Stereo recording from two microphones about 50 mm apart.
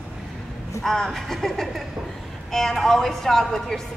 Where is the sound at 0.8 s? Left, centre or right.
Centre.